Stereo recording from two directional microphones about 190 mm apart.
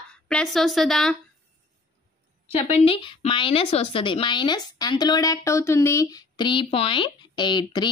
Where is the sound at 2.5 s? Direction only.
30° left (ahead or behind).